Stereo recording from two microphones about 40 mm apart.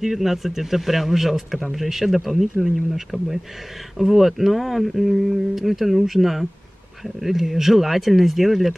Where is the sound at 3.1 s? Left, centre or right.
Right.